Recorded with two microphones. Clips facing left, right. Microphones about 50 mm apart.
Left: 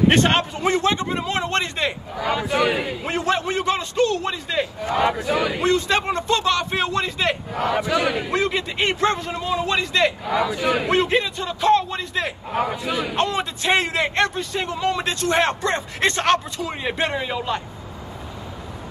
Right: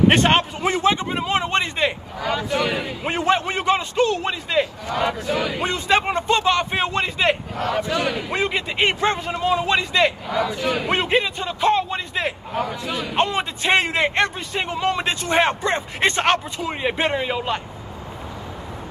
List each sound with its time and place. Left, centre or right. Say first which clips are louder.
0.1 s a man's voice: right 1 dB; centre
2.2 s a man's voice: left 2 dB; centre
3.0 s a man's voice: right 2 dB; right
4.8 s a man's voice: left 2 dB; left
5.6 s speech: even; centre
7.7 s speech: left 1 dB; centre
8.3 s a man's voice: left 1 dB; centre
9.4 s speech: right 6 dB; right
9.8 s a man's voice: right 1 dB; centre
10.3 s speech: left 1 dB; centre
10.9 s a man's voice: left 1 dB; centre
12.5 s a man's voice: left 5 dB; left
13.1 s a man's voice: right 1 dB; centre